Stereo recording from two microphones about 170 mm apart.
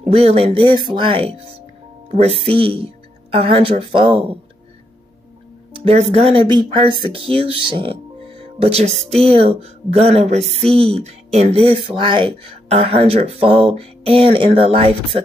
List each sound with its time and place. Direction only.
0.0 s speech: 35° right (ahead or behind)
5.7 s speech: 35° right (ahead or behind)